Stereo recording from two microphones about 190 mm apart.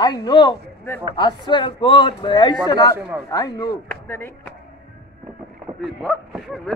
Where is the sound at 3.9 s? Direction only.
10° left (ahead or behind).